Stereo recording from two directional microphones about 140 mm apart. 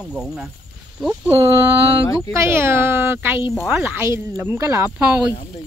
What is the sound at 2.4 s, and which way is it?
Speech, 15° right (ahead or behind).